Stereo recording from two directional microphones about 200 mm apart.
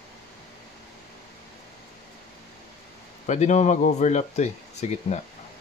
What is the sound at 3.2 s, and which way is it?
Speech, 35° left (ahead or behind).